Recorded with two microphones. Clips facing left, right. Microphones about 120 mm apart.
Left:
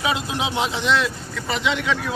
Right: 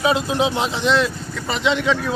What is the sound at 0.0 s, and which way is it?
Speech, 35° right (ahead or behind).